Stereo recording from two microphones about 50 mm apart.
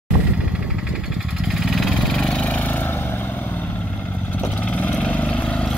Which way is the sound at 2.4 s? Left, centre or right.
Left.